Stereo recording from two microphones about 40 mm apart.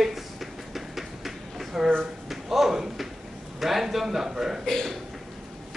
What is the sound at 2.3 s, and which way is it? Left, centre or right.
A man's voice, centre.